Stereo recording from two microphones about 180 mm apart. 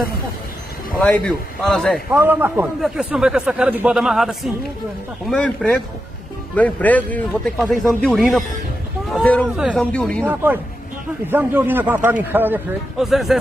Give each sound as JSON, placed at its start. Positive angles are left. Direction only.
{"t": 0.9, "sound": "speech", "side_deg": 5}
{"t": 2.1, "sound": "a man's voice", "side_deg": -10}
{"t": 10.2, "sound": "a man's voice", "side_deg": -10}